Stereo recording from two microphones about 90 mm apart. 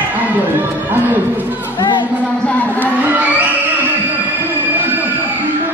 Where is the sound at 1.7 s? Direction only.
60° left (ahead or behind).